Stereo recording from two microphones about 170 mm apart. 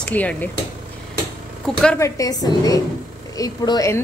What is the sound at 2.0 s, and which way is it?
A woman's voice, 20° left (ahead or behind).